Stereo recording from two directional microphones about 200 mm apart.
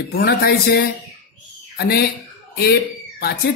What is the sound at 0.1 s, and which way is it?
Speech, 50° left (ahead or behind).